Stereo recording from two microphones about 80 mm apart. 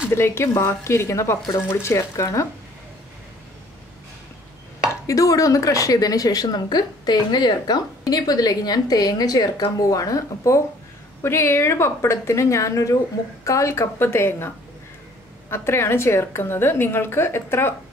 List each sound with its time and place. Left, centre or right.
0.1 s a woman's voice: left
5.0 s a woman's voice: left
15.5 s a woman's voice: left